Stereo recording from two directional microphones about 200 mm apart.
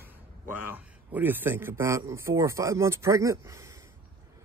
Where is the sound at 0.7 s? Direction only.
10° right (ahead or behind).